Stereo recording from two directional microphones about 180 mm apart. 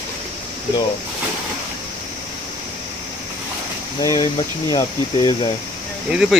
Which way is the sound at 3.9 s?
20° left (ahead or behind).